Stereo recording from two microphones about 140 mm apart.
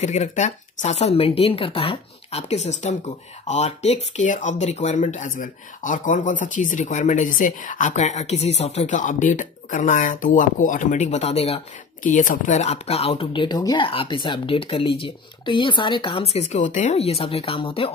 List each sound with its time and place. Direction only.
0.0 s speech: 55° left (ahead or behind)
12.0 s speech: 65° left (ahead or behind); by 17.9 s 40° left (ahead or behind)